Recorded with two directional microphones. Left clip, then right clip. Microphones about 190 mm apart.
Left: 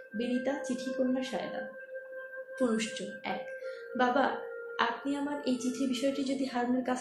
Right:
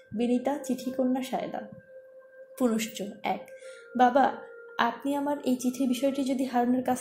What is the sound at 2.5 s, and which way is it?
A woman's voice, 50° right (ahead or behind).